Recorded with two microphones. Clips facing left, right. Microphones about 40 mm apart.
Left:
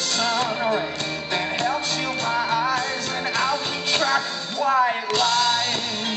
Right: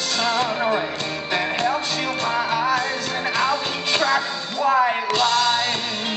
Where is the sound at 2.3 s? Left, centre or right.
Centre.